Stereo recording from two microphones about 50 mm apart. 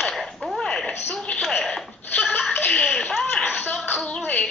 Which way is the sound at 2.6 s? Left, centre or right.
Centre.